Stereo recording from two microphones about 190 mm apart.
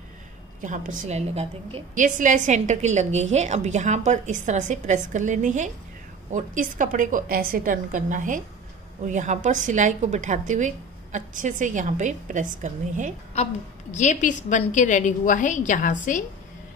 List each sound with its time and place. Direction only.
0.6 s a woman's voice: 40° right (ahead or behind)
13.4 s a woman's voice: 35° left (ahead or behind)